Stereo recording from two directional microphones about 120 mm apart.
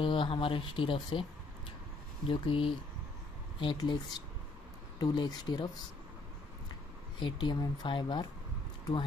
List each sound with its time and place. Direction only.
0.0 s speech: 45° left (ahead or behind)
2.2 s speech: 45° left (ahead or behind)
3.7 s speech: 35° left (ahead or behind)
7.2 s speech: 40° left (ahead or behind)